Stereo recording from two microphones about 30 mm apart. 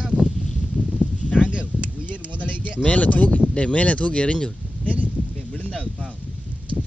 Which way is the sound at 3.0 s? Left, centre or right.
Left.